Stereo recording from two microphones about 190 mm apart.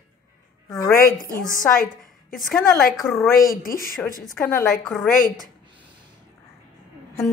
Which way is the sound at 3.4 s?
50° left (ahead or behind).